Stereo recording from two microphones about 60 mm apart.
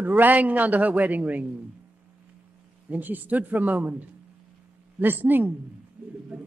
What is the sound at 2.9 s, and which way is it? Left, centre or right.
A man's voice, right.